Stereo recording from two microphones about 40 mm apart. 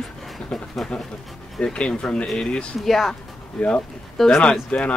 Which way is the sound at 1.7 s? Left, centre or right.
Left.